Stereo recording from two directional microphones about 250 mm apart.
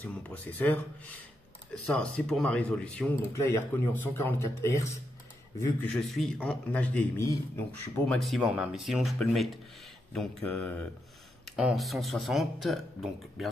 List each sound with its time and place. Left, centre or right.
0.0 s a man's voice: centre